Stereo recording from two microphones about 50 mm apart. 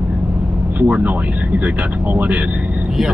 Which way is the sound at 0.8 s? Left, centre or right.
Right.